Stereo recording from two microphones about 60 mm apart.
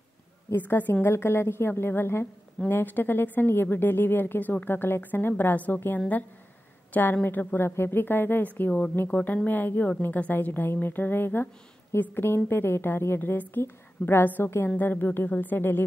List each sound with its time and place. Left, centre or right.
0.6 s a woman's voice: left